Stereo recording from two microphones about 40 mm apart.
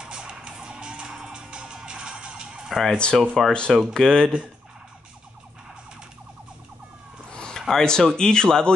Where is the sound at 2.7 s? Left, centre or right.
Centre.